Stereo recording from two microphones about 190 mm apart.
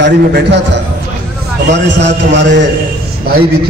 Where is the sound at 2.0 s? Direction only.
65° right (ahead or behind).